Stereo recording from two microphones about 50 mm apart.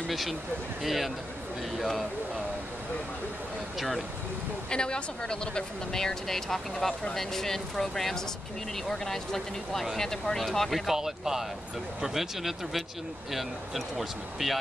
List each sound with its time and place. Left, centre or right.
0.1 s speech: centre
3.7 s speech: centre
4.6 s speech: centre
10.9 s speech: centre